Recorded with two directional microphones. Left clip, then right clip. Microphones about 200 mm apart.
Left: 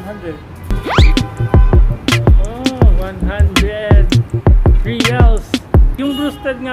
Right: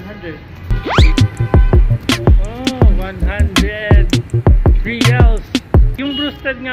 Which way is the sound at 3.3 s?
Centre (ahead or behind).